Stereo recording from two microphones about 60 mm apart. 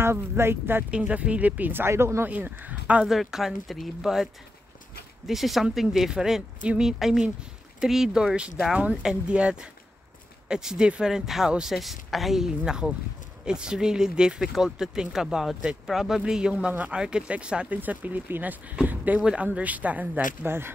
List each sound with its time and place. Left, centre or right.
0.0 s speech: right
0.8 s speech: right
1.9 s speech: right
2.2 s speech: right
3.1 s speech: centre
8.7 s speech: centre
16.7 s speech: right
17.6 s speech: right
20.4 s speech: right